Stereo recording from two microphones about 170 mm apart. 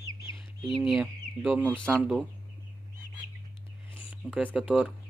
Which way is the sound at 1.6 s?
10° left (ahead or behind).